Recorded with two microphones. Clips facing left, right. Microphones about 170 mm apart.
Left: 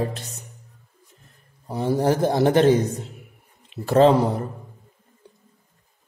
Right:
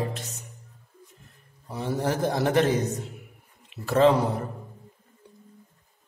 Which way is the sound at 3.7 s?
30° left (ahead or behind).